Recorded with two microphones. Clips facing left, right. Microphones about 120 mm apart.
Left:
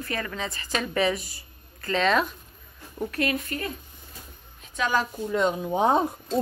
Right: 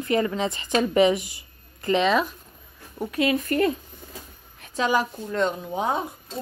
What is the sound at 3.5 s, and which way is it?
Speech, 55° right (ahead or behind).